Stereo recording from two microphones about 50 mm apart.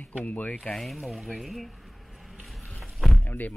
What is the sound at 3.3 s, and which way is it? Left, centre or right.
Speech, left.